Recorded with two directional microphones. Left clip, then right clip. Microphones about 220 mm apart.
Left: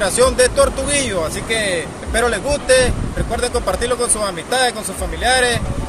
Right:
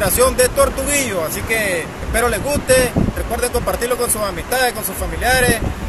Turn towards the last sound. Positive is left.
turn(degrees=0)  # may be behind; listen again after turning